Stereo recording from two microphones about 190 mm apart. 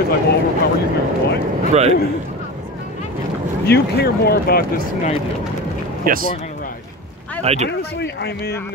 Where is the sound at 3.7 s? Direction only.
55° left (ahead or behind).